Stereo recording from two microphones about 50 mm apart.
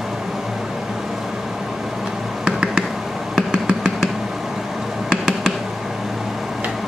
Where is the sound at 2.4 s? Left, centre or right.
Centre.